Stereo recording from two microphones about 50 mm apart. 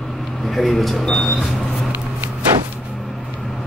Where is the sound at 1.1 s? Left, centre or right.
Centre.